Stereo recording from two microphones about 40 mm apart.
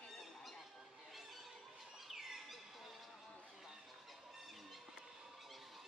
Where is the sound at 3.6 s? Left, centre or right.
Centre.